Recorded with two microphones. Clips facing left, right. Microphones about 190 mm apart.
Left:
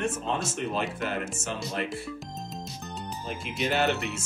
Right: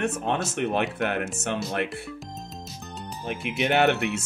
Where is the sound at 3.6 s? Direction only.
65° right (ahead or behind).